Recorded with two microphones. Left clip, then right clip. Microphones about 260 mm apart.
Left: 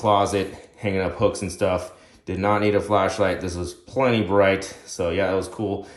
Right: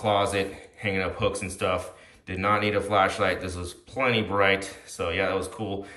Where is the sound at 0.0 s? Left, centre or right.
Centre.